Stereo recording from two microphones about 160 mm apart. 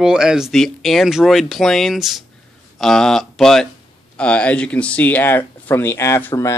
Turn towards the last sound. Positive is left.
turn(degrees=20)  # may be behind; listen again after turning